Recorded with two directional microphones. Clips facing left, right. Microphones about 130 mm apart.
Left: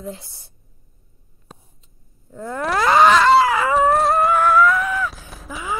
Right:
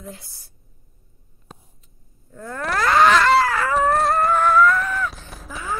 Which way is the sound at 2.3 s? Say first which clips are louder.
Left 3 dB; 20° left (ahead or behind).